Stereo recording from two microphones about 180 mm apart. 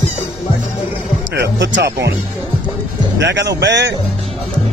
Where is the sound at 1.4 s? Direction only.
75° right (ahead or behind).